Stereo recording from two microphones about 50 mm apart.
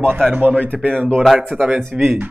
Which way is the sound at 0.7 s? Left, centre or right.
Left.